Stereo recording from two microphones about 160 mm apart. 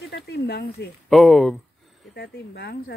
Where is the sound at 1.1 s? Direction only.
Centre (ahead or behind).